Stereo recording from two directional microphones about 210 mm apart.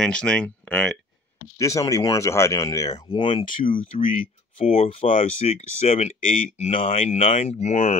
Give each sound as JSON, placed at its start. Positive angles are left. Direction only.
{"t": 0.0, "sound": "speech", "side_deg": 5}
{"t": 1.6, "sound": "speech", "side_deg": 15}
{"t": 3.4, "sound": "speech", "side_deg": 40}